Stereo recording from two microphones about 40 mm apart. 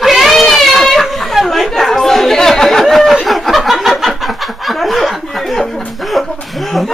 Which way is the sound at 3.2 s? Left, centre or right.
Centre.